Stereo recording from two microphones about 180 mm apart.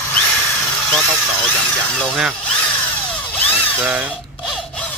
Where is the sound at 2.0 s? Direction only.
Centre (ahead or behind).